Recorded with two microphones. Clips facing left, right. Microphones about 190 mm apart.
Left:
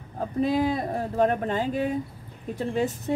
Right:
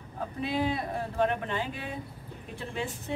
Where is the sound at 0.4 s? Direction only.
40° left (ahead or behind).